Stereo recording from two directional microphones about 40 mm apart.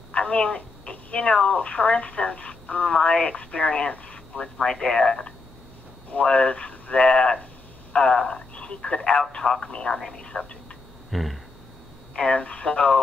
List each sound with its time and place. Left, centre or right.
0.1 s speech: left
4.6 s speech: centre
6.1 s speech: left
11.1 s a sound: centre
12.2 s speech: left